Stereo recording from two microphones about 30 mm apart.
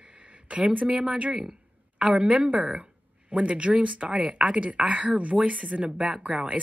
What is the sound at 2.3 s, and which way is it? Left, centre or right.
Speech, right.